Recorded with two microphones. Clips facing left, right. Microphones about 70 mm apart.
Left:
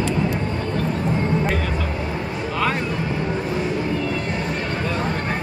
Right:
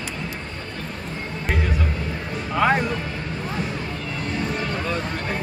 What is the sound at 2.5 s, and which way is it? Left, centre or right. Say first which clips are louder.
Music: right 4 dB; right.